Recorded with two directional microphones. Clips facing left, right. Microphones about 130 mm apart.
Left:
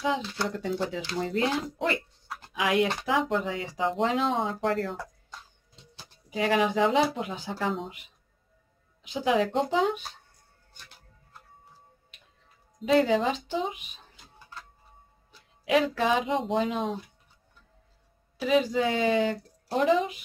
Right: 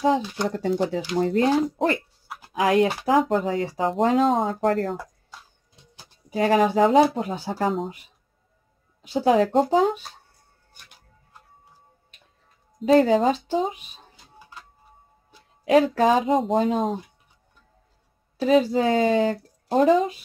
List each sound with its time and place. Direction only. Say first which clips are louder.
0.2 s speech: right 5 dB; 15° right (ahead or behind)
0.5 s speech: right 8 dB; 45° right (ahead or behind)
2.5 s speech: right 6 dB; 40° right (ahead or behind)
4.9 s a sound: right 4 dB; 5° right (ahead or behind)
6.3 s speech: right 6 dB; 40° right (ahead or behind)
9.0 s speech: right 6 dB; 35° right (ahead or behind)
12.8 s speech: right 6 dB; 40° right (ahead or behind)
15.6 s speech: right 7 dB; 40° right (ahead or behind)
18.4 s speech: right 5 dB; 35° right (ahead or behind)